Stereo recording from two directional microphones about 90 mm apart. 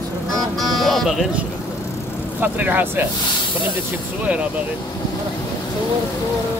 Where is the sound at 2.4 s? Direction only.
20° right (ahead or behind).